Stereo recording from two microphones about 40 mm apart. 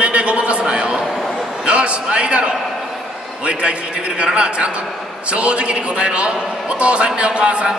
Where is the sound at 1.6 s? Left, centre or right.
Right.